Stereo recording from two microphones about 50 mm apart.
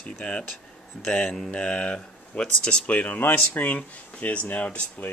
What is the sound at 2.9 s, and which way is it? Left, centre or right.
Speech, left.